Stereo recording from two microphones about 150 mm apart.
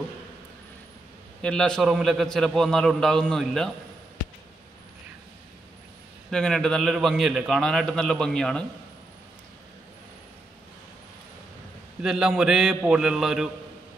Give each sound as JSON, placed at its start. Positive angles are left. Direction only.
{"t": 1.4, "sound": "a man's voice", "side_deg": 5}
{"t": 6.3, "sound": "a man's voice", "side_deg": 5}
{"t": 12.0, "sound": "a man's voice", "side_deg": -5}